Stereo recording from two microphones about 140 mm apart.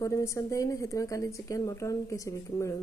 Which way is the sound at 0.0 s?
20° left (ahead or behind).